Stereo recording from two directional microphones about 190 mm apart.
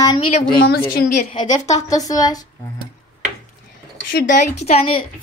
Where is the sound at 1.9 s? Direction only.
20° left (ahead or behind).